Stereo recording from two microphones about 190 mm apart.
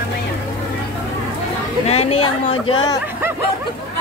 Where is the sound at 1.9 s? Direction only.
30° left (ahead or behind).